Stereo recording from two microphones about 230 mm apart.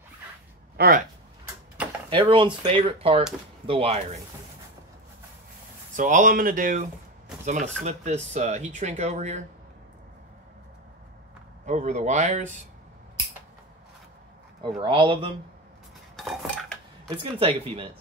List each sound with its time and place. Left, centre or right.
0.7 s speech: right
2.0 s speech: right
5.9 s speech: right
11.6 s speech: right
14.8 s speech: right
16.2 s cutlery: centre
17.2 s speech: right